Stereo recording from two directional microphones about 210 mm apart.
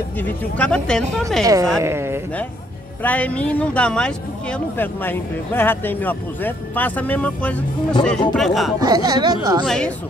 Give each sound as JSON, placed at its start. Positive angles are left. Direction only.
{"t": 0.2, "sound": "speech", "side_deg": 5}
{"t": 1.4, "sound": "speech", "side_deg": -15}
{"t": 3.0, "sound": "speech", "side_deg": 5}
{"t": 8.7, "sound": "speech", "side_deg": -20}
{"t": 9.7, "sound": "speech", "side_deg": 5}